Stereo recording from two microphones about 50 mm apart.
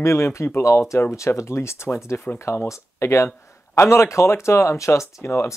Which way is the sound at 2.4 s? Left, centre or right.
Left.